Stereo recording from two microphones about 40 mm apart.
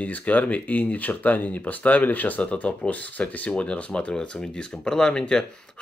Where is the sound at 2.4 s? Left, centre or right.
Left.